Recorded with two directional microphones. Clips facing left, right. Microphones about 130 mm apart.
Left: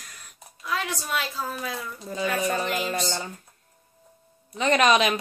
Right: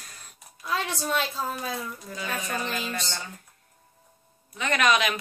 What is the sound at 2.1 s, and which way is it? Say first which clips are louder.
Speech: left 9 dB; 30° left (ahead or behind).